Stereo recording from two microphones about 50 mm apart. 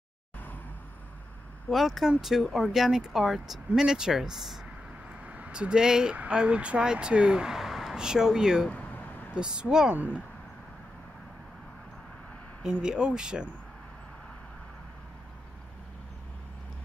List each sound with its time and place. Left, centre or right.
1.7 s speech: centre
5.2 s vehicle: right
5.5 s speech: centre
7.5 s speech: centre
8.6 s vehicle: left
9.3 s speech: centre
12.8 s speech: centre